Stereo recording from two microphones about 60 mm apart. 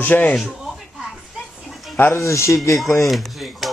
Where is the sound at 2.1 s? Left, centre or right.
Left.